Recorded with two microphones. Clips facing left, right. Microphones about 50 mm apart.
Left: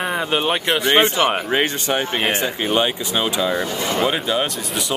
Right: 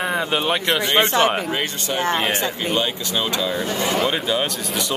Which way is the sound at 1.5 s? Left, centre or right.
Left.